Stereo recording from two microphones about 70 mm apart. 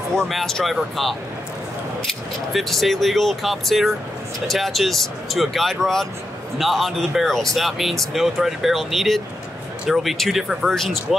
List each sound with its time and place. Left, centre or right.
0.3 s speech: centre
2.0 s speech: centre